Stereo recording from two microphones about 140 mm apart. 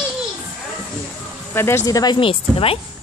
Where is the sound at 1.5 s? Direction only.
15° left (ahead or behind); by 2.8 s 40° left (ahead or behind).